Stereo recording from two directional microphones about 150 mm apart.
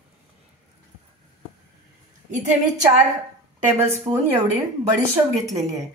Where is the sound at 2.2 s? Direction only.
55° right (ahead or behind).